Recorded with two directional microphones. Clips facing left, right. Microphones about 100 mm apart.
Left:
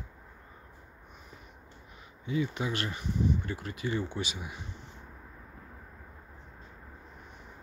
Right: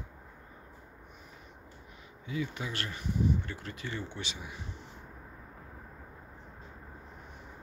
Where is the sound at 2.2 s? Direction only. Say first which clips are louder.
Left 5 dB; 25° left (ahead or behind).